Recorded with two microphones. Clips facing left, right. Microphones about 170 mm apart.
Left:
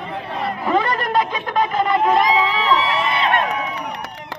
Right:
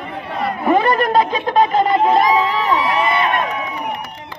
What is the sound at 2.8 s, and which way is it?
Crowd, 75° left (ahead or behind).